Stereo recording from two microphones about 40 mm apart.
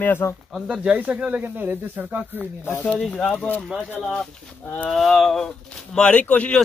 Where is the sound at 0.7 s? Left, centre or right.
Right.